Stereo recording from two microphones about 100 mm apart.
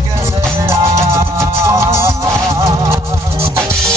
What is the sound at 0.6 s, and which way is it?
Music, 30° right (ahead or behind).